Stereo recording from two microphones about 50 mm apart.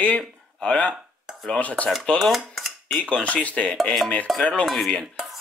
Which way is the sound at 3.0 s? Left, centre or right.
Left.